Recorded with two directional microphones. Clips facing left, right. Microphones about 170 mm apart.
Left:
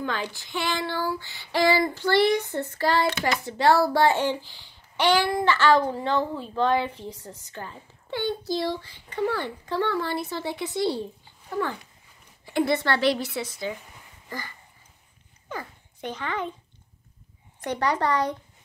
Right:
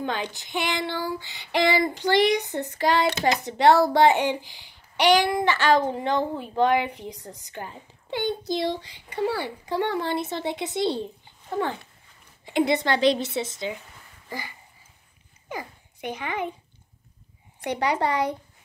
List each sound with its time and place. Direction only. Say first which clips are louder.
0.0 s a child's voice: right 1 dB; 20° right (ahead or behind)
17.6 s a child's voice: even; 10° right (ahead or behind)